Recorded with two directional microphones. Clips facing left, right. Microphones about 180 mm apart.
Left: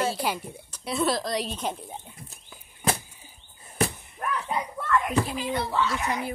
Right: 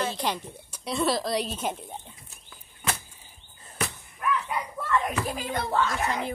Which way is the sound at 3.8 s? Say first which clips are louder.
Left 3 dB; 40° left (ahead or behind).